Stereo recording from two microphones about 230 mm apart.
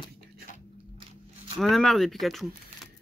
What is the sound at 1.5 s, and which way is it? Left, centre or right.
Speech, centre.